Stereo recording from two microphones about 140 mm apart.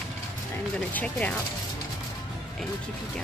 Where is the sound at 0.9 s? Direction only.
10° left (ahead or behind).